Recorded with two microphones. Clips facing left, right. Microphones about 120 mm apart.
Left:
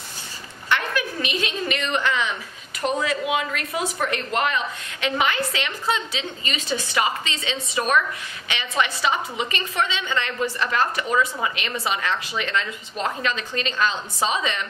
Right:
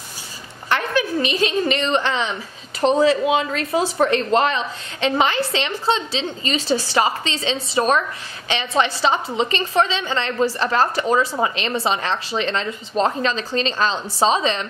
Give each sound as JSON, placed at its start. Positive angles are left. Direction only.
{"t": 0.7, "sound": "a woman's voice", "side_deg": -30}